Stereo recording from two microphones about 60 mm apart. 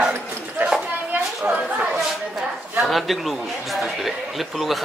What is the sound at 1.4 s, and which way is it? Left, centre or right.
Speech, centre.